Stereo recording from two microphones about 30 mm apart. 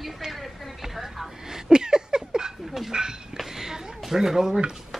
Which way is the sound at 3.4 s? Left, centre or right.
Centre.